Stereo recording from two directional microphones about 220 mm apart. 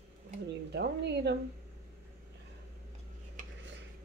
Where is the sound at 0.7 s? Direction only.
50° right (ahead or behind).